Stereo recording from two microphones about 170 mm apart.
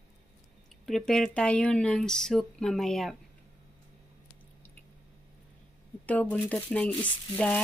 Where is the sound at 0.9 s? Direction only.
Centre (ahead or behind).